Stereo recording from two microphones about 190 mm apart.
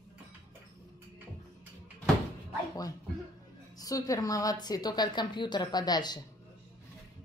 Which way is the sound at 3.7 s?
20° left (ahead or behind).